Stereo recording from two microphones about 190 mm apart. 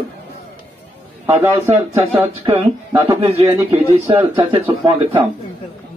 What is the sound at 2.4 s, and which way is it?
Speech, 25° right (ahead or behind).